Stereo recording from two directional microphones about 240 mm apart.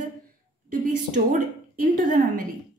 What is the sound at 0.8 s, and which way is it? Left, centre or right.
A woman's voice, right.